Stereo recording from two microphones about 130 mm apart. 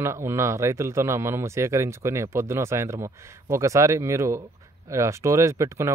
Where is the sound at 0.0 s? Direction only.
20° right (ahead or behind).